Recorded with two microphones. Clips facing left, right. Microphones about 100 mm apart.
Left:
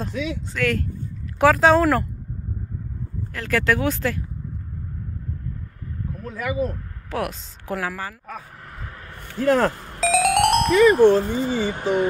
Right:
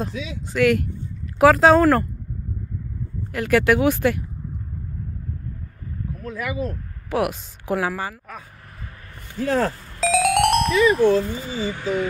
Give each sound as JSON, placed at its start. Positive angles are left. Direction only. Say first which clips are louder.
{"t": 0.1, "sound": "speech", "louder": "left 5 dB", "side_deg": 60}
{"t": 0.5, "sound": "speech", "louder": "right 8 dB", "side_deg": -10}
{"t": 1.4, "sound": "speech", "louder": "right 2 dB", "side_deg": 0}
{"t": 3.3, "sound": "speech", "louder": "right 4 dB", "side_deg": -15}
{"t": 7.1, "sound": "speech", "louder": "right 4 dB", "side_deg": -10}
{"t": 8.7, "sound": "a sound", "louder": "left 3 dB", "side_deg": 65}
{"t": 9.9, "sound": "speech", "louder": "right 1 dB", "side_deg": 0}
{"t": 11.0, "sound": "speech", "louder": "left 3 dB", "side_deg": 40}